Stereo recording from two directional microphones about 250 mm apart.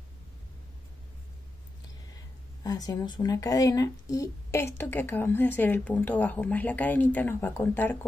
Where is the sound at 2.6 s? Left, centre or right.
Centre.